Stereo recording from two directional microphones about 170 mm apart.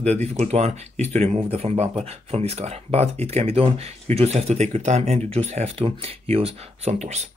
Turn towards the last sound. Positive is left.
turn(degrees=-40)  # may be behind; listen again after turning